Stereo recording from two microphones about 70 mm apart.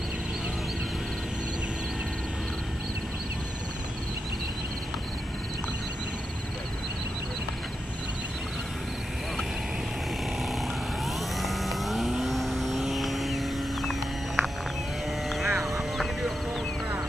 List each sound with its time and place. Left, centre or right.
11.3 s vehicle: centre
15.2 s music: centre